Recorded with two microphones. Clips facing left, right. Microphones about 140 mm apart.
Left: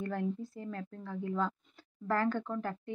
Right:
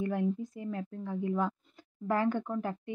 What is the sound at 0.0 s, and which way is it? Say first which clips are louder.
A woman's voice: right 4 dB; 15° right (ahead or behind).